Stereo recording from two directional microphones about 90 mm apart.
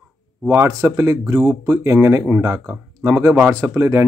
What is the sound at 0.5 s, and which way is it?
Speech, 35° right (ahead or behind).